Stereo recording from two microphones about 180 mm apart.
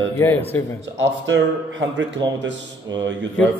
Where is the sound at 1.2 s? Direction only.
85° right.